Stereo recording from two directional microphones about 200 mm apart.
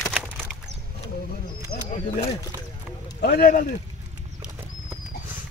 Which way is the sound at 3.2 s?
50° left (ahead or behind).